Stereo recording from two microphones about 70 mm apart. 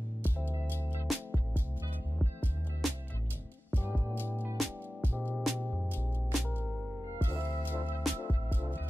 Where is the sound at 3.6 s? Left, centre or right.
Right.